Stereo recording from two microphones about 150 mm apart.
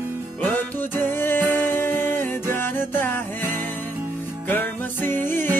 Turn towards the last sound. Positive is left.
turn(degrees=15)  # may be behind; listen again after turning